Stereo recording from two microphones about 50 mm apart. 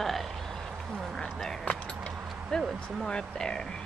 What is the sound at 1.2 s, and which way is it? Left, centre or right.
Speech, centre.